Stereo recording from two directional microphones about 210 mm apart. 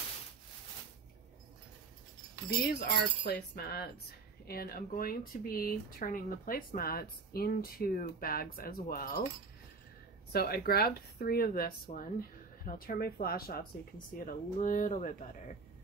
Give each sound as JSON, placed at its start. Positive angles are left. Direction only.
{"t": 2.6, "sound": "speech", "side_deg": 50}
{"t": 10.3, "sound": "speech", "side_deg": 45}